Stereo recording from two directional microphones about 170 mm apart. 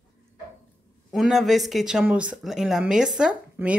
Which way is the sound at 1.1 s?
Centre (ahead or behind).